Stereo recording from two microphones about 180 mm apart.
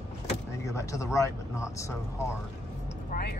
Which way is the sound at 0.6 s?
15° left (ahead or behind).